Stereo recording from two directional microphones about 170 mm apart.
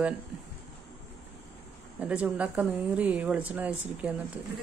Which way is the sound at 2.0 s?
5° right (ahead or behind).